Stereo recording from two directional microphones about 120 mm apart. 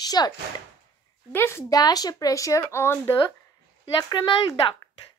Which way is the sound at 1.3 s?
20° left (ahead or behind).